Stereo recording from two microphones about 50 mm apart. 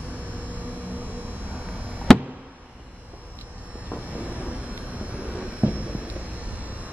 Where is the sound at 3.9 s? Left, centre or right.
Right.